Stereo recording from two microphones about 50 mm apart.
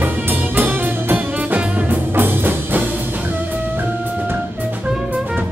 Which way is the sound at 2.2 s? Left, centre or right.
Right.